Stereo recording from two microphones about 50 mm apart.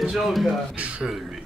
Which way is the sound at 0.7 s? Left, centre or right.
Right.